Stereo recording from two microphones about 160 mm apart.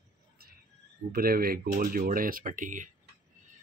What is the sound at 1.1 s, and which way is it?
Speech, 65° right (ahead or behind).